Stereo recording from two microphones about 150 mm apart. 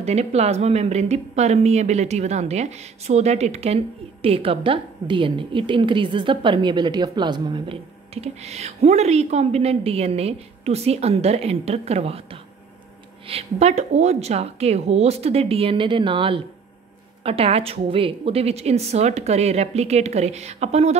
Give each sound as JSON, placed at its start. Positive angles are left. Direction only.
{"t": 0.0, "sound": "a woman's voice", "side_deg": -45}